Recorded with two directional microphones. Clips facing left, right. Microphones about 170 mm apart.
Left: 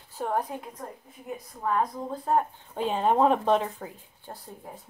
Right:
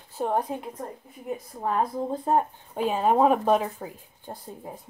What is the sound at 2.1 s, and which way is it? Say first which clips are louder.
Speech: right 1 dB; 25° right (ahead or behind).